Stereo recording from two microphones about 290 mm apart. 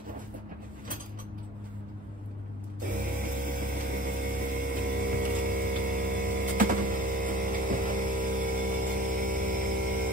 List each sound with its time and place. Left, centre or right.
3.0 s vehicle: right